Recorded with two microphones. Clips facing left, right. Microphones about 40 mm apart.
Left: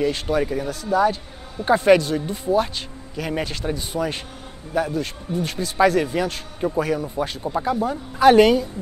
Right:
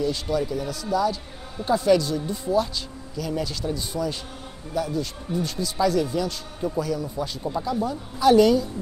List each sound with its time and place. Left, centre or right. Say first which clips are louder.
0.0 s speech: left 3 dB; left
7.5 s speech: left 2 dB; left
7.8 s speech: left 6 dB; left